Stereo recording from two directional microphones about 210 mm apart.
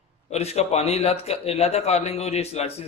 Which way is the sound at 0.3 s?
30° left (ahead or behind).